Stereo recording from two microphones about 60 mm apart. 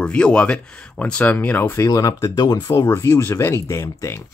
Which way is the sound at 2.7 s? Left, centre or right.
Left.